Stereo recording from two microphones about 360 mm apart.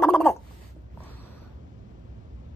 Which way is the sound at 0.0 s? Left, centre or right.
Centre.